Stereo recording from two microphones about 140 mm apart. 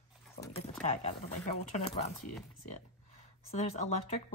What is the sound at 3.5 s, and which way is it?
Speech, 50° left (ahead or behind).